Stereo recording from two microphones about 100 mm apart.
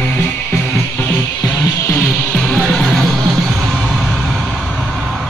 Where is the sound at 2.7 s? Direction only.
5° left (ahead or behind).